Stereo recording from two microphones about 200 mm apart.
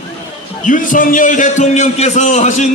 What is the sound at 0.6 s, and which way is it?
A man's voice, 40° left (ahead or behind).